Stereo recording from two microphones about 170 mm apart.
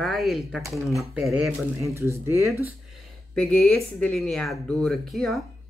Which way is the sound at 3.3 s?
5° left (ahead or behind).